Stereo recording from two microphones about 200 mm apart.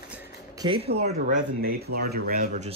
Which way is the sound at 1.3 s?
45° right (ahead or behind).